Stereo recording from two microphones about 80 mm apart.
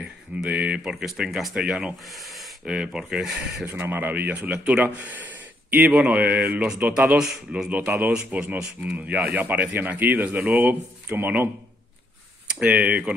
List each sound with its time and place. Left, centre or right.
0.4 s speech: centre
2.0 s speech: centre
2.6 s speech: centre
3.6 s speech: right
8.3 s speech: right
12.4 s speech: centre